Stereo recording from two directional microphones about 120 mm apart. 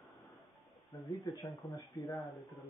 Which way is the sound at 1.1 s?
40° left (ahead or behind).